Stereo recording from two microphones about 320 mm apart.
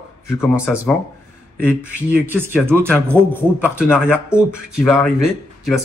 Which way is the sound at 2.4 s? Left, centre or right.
Centre.